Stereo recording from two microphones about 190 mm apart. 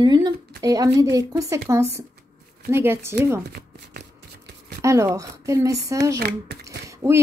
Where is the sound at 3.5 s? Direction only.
50° right (ahead or behind).